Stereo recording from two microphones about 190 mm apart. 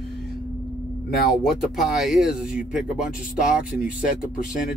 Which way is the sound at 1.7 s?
Centre (ahead or behind).